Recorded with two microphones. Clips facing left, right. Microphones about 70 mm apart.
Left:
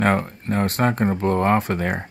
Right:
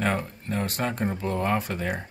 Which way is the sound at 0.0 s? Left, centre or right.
Left.